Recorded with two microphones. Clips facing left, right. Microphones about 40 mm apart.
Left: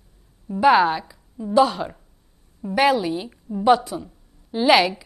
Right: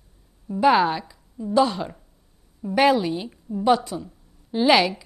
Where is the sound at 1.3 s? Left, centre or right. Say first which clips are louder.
Left 2 dB; centre.